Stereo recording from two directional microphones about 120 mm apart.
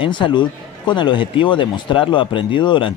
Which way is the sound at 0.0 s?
40° left (ahead or behind).